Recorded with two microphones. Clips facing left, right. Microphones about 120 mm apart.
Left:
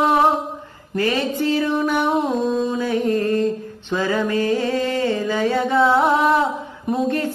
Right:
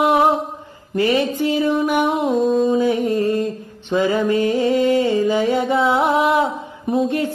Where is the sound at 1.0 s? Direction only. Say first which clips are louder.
Right 3 dB; 15° right (ahead or behind).